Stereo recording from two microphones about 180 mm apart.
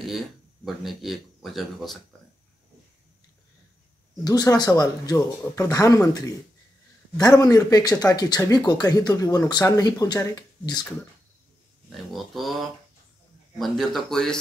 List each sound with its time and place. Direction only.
0.7 s speech: centre (ahead or behind)
4.2 s speech: 20° left (ahead or behind)
11.9 s speech: centre (ahead or behind)